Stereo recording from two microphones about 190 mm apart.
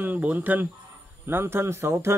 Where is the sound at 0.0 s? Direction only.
10° right (ahead or behind).